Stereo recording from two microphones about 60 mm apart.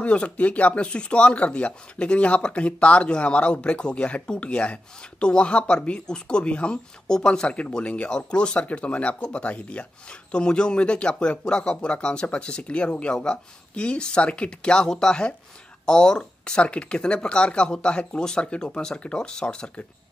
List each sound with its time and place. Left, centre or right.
0.0 s speech: left